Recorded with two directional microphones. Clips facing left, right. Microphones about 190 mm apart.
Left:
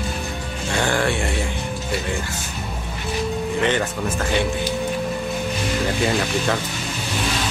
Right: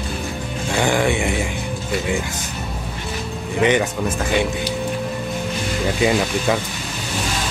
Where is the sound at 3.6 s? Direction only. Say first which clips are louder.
Right 6 dB; 10° right (ahead or behind).